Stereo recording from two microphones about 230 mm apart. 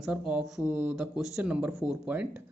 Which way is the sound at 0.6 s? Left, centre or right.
Centre.